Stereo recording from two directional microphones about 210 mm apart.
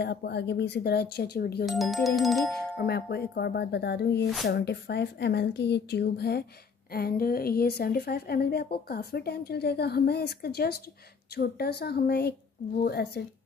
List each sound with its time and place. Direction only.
0.0 s a woman's voice: 50° left (ahead or behind)
1.7 s speech: centre (ahead or behind)
2.9 s a woman's voice: 50° left (ahead or behind)